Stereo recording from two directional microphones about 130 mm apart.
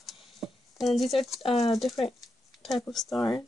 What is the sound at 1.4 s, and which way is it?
Speech, 50° left (ahead or behind).